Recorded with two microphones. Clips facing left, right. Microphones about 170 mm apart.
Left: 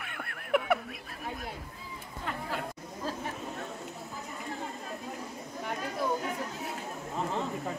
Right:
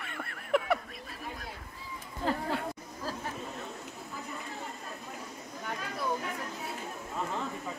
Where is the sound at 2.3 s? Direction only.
35° right (ahead or behind).